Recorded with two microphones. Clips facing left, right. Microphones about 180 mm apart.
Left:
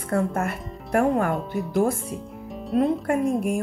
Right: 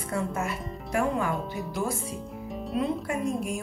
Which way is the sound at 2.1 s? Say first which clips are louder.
Left 2 dB; centre (ahead or behind).